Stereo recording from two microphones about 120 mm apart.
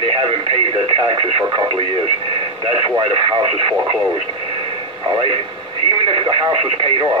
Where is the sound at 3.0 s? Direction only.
45° right (ahead or behind).